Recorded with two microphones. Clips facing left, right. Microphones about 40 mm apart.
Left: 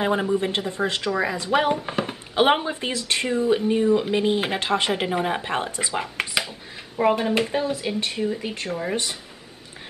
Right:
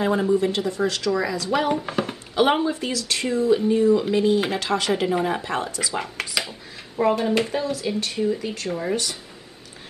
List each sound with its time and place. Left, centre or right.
0.0 s speech: left
1.9 s a sound: centre
2.3 s speech: left
7.6 s speech: left